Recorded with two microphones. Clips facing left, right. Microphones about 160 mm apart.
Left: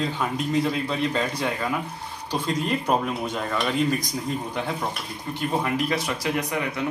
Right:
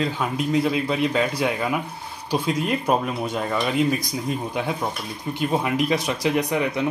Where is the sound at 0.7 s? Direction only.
10° right (ahead or behind).